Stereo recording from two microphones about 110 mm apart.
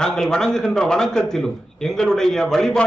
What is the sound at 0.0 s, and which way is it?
A man's voice, 5° left (ahead or behind).